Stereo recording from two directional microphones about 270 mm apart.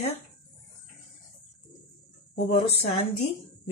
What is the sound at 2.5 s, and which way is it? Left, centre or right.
Speech, left.